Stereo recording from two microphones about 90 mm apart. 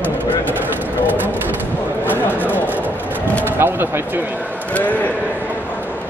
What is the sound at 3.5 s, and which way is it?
Speech, 25° right (ahead or behind).